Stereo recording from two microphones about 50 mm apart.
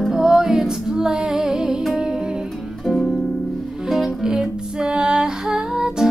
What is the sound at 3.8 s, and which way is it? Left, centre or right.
Music, centre.